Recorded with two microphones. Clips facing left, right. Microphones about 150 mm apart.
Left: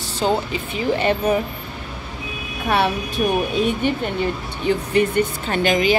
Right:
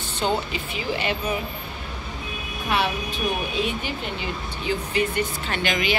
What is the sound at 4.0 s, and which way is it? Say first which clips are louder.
Speech: left 7 dB; 50° left (ahead or behind).